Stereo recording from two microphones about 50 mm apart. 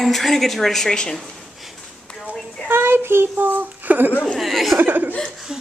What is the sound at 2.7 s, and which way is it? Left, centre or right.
Speech, right.